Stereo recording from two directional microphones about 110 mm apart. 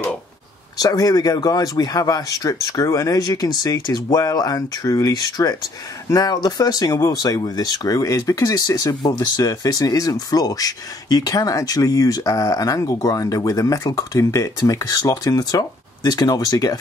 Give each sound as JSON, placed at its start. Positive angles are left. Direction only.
{"t": 0.7, "sound": "speech", "side_deg": 35}